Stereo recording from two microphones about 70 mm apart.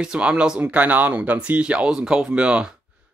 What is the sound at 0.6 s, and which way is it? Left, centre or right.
A man's voice, right.